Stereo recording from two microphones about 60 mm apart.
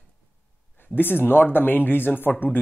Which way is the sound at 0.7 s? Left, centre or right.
Left.